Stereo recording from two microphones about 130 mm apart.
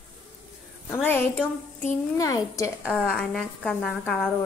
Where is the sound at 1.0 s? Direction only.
15° left (ahead or behind).